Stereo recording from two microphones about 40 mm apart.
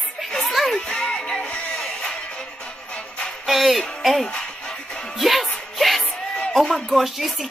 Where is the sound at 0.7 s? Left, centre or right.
Centre.